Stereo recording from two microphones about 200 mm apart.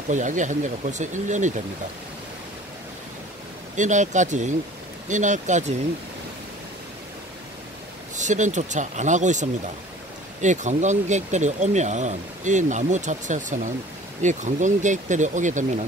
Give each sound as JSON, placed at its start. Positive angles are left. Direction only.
{"t": 0.1, "sound": "speech", "side_deg": -40}
{"t": 3.7, "sound": "speech", "side_deg": -40}
{"t": 8.2, "sound": "speech", "side_deg": -35}